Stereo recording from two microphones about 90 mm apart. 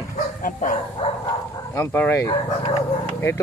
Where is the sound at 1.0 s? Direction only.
90° left.